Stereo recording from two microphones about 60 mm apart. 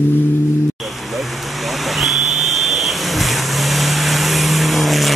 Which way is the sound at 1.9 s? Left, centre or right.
Centre.